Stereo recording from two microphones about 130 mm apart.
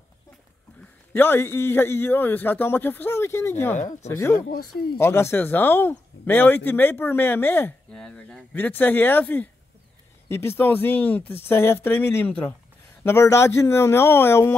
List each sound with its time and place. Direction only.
1.1 s speech: 15° left (ahead or behind)
3.7 s speech: 70° left (ahead or behind)
4.1 s speech: 20° left (ahead or behind)